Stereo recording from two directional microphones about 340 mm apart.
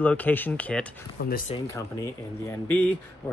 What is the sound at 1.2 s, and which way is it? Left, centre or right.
Speech, left.